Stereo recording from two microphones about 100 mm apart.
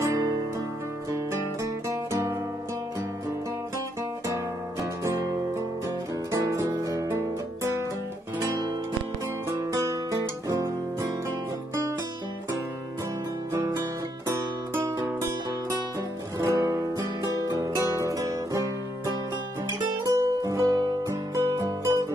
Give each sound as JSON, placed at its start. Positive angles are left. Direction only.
{"t": 0.0, "sound": "music", "side_deg": -40}
{"t": 1.1, "sound": "music", "side_deg": -25}
{"t": 5.0, "sound": "music", "side_deg": -35}
{"t": 8.4, "sound": "music", "side_deg": -45}
{"t": 9.5, "sound": "guitar", "side_deg": -35}
{"t": 13.5, "sound": "guitar", "side_deg": -25}
{"t": 14.3, "sound": "music", "side_deg": -20}
{"t": 16.3, "sound": "music", "side_deg": -35}